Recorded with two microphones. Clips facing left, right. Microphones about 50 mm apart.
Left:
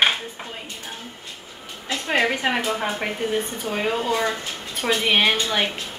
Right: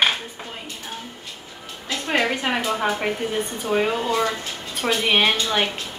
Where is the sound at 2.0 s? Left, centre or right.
Centre.